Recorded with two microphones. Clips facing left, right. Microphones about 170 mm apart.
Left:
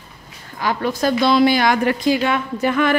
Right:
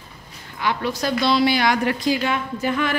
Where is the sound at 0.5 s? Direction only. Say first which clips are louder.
Left 3 dB; 45° left (ahead or behind).